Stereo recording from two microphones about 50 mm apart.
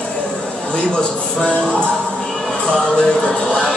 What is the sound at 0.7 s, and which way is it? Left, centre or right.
Music, left.